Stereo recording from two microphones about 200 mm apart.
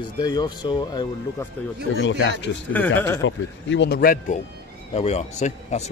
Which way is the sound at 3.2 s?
65° left (ahead or behind).